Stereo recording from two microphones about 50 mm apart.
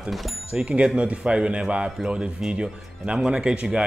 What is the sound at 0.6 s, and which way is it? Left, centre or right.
A man's voice, right.